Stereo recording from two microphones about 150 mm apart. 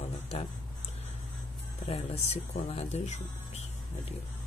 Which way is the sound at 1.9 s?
45° left (ahead or behind).